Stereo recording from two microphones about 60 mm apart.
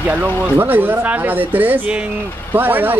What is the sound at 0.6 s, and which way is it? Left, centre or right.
Speech, right.